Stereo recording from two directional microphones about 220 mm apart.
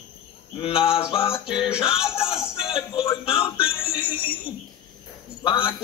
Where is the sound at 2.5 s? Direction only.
25° left (ahead or behind).